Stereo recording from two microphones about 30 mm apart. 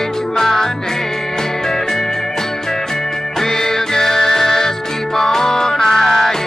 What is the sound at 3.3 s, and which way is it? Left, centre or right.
Music, centre.